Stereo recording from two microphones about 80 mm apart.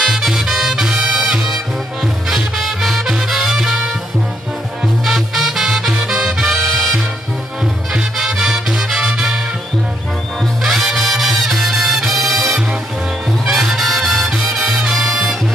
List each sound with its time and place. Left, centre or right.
0.0 s music: centre
5.0 s music: centre
10.6 s music: centre